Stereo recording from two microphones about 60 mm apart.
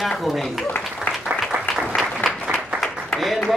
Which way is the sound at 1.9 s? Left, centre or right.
Left.